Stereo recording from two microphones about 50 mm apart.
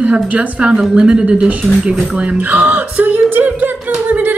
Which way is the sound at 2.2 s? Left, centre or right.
Right.